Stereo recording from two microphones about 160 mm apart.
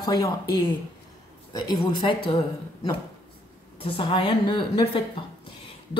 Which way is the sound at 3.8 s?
30° left (ahead or behind).